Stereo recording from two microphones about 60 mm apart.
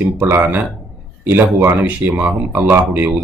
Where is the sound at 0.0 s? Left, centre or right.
Right.